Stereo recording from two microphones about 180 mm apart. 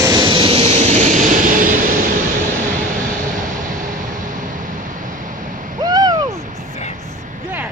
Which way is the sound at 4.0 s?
45° right (ahead or behind).